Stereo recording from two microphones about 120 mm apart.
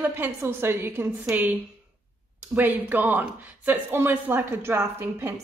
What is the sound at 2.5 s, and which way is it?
A woman's voice, 15° right (ahead or behind).